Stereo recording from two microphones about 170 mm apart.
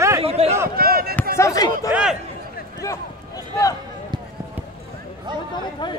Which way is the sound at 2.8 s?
20° left (ahead or behind).